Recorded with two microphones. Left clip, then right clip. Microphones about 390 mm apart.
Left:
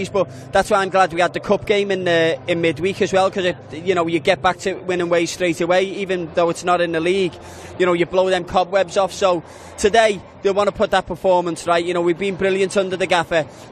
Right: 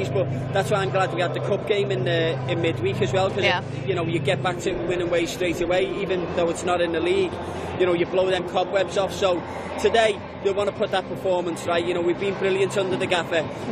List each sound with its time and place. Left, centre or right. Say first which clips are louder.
0.0 s a man's voice: left 4 dB; left